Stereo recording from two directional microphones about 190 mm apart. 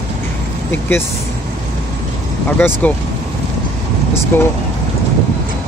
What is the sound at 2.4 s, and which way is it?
Speech, 10° left (ahead or behind).